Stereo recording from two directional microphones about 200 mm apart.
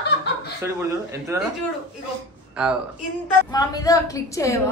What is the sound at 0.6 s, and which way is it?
Speech, 15° right (ahead or behind).